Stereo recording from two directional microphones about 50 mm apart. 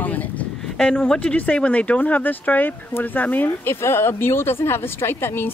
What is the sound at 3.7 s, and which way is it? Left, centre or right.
Speech, left.